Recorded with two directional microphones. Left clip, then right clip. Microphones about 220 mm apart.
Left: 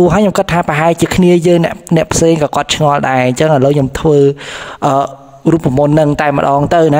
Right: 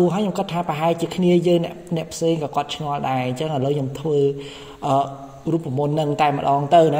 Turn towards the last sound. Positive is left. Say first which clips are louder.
# left 5 dB
turn(degrees=40)  # may be behind; listen again after turning